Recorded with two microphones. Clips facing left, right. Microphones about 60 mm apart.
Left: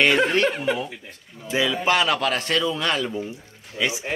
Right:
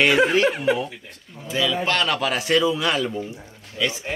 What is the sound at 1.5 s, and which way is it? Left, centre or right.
Speech, left.